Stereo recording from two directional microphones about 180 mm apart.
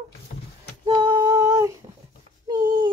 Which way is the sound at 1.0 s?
25° right (ahead or behind).